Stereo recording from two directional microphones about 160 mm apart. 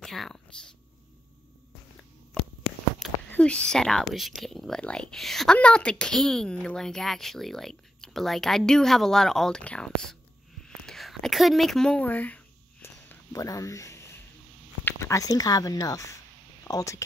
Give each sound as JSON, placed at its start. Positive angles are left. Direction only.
{"t": 0.0, "sound": "speech", "side_deg": 0}
{"t": 3.3, "sound": "speech", "side_deg": 5}
{"t": 12.8, "sound": "a sound", "side_deg": 15}
{"t": 14.9, "sound": "speech", "side_deg": 15}